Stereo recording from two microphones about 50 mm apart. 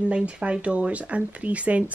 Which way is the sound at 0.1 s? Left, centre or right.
Right.